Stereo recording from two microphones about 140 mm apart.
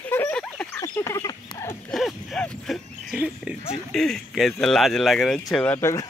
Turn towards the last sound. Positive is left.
turn(degrees=20)  # may be behind; listen again after turning